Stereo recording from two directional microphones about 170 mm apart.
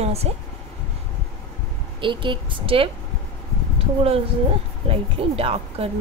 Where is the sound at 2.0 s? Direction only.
30° right (ahead or behind).